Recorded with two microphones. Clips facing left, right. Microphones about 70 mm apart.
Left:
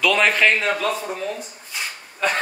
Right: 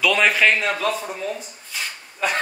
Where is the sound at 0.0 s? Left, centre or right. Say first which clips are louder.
Even; centre.